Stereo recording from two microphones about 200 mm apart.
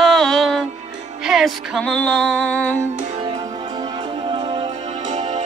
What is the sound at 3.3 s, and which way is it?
Music, 25° right (ahead or behind).